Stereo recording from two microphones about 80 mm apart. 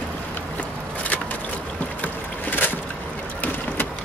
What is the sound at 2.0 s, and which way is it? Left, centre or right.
Boat, left.